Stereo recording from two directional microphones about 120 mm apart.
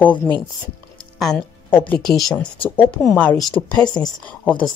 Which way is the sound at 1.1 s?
Centre (ahead or behind).